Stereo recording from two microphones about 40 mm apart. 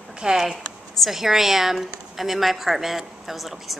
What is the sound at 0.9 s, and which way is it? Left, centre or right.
A woman's voice, centre.